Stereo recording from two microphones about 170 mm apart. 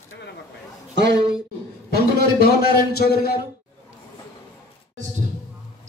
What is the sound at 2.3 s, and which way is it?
Speech, 65° left (ahead or behind).